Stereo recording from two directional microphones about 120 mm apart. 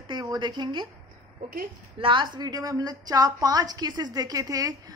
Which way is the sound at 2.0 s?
45° right (ahead or behind).